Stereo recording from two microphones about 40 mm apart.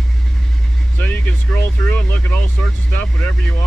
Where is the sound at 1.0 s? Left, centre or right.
Left.